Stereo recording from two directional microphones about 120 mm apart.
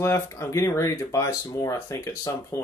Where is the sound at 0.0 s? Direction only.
25° left (ahead or behind).